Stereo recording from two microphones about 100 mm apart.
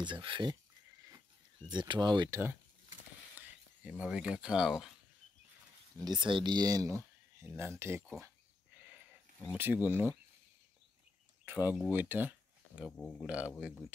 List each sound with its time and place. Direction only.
0.0 s speech: 55° right (ahead or behind)
1.7 s speech: 45° right (ahead or behind)
3.3 s speech: 15° right (ahead or behind)
5.9 s speech: 45° right (ahead or behind); by 8.0 s 25° right (ahead or behind)
9.6 s speech: 20° right (ahead or behind)
11.4 s speech: 20° right (ahead or behind)
12.9 s speech: 10° left (ahead or behind)
13.6 s speech: 10° right (ahead or behind)